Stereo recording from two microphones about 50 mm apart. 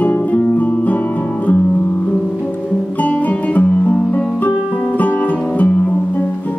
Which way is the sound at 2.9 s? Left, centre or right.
Left.